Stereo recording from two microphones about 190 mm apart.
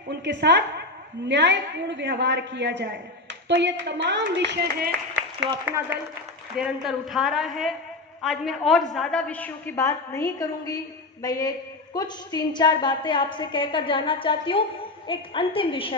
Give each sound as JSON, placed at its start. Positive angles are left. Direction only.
{"t": 0.1, "sound": "a woman's voice", "side_deg": -65}
{"t": 4.5, "sound": "speech", "side_deg": -55}
{"t": 5.4, "sound": "a woman's voice", "side_deg": -10}